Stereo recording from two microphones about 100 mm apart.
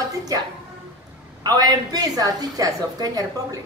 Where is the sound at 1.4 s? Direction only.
40° right (ahead or behind).